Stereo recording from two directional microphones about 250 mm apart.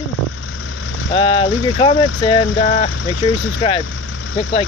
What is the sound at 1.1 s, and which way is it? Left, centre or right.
Speech, left.